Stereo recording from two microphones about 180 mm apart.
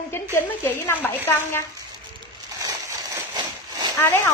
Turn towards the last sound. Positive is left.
turn(degrees=15)  # may be behind; listen again after turning